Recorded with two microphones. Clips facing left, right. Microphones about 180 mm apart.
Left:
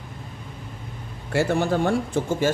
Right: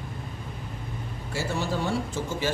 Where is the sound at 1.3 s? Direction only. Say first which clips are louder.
Left 8 dB; 60° left (ahead or behind).